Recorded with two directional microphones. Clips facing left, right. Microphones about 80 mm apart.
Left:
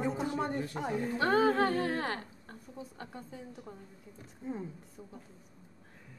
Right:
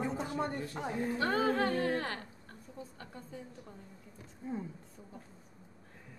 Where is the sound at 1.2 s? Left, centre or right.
Left.